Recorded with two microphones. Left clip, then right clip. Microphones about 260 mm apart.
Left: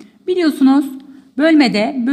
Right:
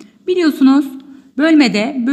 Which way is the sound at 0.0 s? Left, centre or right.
Centre.